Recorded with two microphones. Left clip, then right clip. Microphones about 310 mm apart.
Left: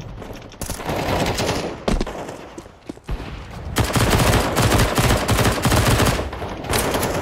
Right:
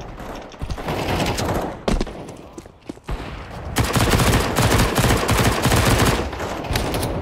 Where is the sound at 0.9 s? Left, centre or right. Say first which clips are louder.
Left 1 dB; centre.